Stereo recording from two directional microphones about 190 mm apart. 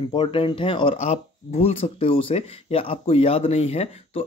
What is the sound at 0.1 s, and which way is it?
Speech, 25° left (ahead or behind).